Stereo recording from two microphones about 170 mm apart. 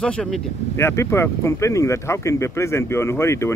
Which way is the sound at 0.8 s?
15° left (ahead or behind).